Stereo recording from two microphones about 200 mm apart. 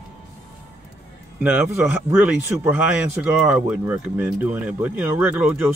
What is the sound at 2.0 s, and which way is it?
Speech, 10° right (ahead or behind).